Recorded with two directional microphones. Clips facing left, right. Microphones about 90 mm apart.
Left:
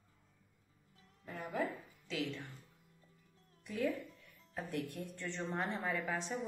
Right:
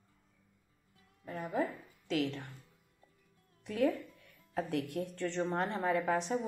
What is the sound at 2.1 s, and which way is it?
Speech, 65° right (ahead or behind).